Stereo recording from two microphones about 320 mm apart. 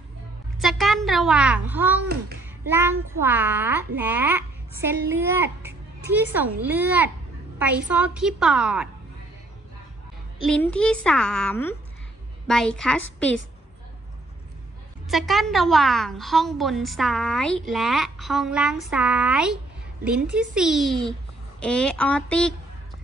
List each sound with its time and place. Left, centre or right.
0.6 s a woman's voice: centre
10.4 s a woman's voice: centre
15.0 s a woman's voice: centre